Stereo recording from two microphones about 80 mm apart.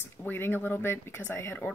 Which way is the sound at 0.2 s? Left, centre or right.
Left.